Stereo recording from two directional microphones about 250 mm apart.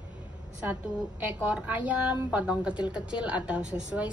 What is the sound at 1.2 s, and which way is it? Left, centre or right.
A woman's voice, centre.